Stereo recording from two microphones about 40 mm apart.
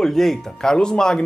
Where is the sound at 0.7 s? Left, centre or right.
Centre.